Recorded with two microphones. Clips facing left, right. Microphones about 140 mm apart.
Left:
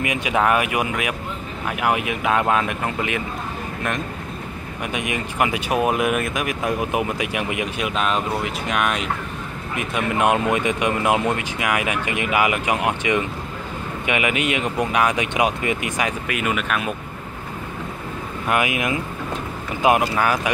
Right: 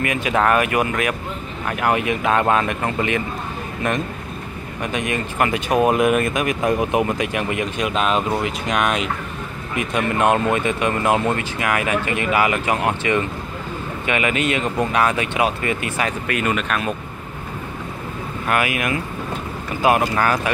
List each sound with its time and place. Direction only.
0.0 s speech: 15° left (ahead or behind)
4.9 s speech: 10° left (ahead or behind)
18.5 s speech: 20° left (ahead or behind)